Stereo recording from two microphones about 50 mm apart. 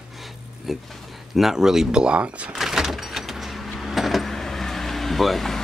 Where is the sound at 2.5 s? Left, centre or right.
Centre.